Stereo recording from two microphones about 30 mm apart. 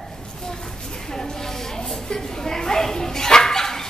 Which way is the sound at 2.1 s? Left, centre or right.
Centre.